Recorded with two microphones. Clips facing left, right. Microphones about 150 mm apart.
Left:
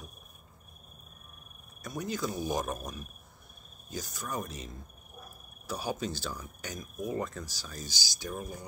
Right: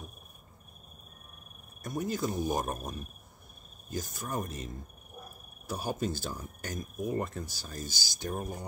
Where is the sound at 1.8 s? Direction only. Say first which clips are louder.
Right 2 dB; 50° right (ahead or behind).